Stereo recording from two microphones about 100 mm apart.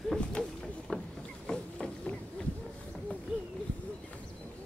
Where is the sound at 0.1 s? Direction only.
5° left (ahead or behind).